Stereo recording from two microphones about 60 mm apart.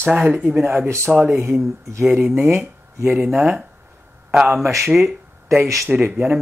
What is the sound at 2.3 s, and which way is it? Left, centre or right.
Speech, right.